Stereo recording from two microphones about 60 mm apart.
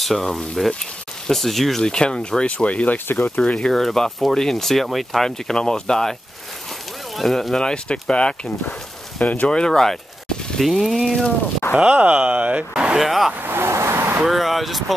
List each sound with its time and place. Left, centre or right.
0.0 s speech: centre; by 3.0 s left
3.1 s speech: left
3.3 s speech: centre
7.2 s speech: centre
9.5 s speech: centre
11.7 s speech: right
12.7 s speech: centre
13.3 s vehicle: right
14.2 s speech: centre